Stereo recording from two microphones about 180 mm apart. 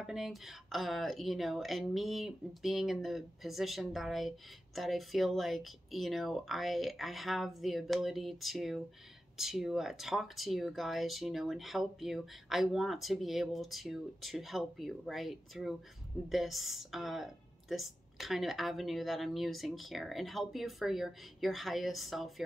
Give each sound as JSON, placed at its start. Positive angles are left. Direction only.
{"t": 0.0, "sound": "speech", "side_deg": 0}